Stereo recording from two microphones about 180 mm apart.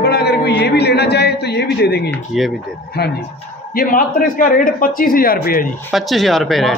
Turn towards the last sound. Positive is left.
turn(degrees=0)  # may be behind; listen again after turning